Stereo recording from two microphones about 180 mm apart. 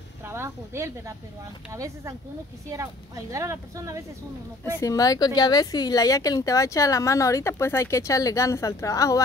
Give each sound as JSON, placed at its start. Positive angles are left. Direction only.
{"t": 0.2, "sound": "speech", "side_deg": -15}
{"t": 4.7, "sound": "speech", "side_deg": 20}